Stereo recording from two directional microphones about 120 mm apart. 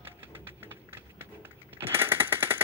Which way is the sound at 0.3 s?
15° right (ahead or behind).